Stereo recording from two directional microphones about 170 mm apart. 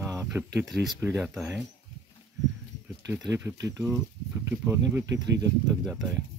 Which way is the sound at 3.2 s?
20° right (ahead or behind).